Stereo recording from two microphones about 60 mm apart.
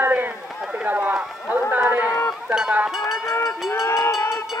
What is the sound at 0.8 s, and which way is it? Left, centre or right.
Run, right.